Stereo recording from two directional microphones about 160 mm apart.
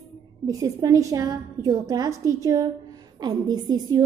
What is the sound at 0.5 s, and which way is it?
A woman's voice, 20° right (ahead or behind).